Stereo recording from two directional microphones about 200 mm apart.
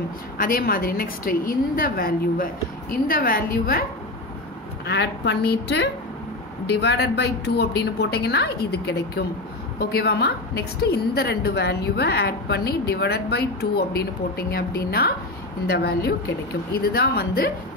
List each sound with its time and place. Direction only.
0.4 s a woman's voice: 45° left (ahead or behind)
4.8 s a woman's voice: 60° left (ahead or behind)